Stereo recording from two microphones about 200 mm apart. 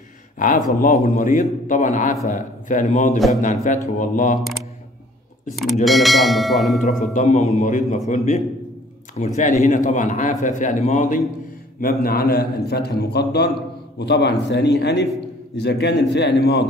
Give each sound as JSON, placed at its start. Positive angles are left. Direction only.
{"t": 0.7, "sound": "a man's voice", "side_deg": 45}
{"t": 5.9, "sound": "bell", "side_deg": 0}
{"t": 6.8, "sound": "a man's voice", "side_deg": 40}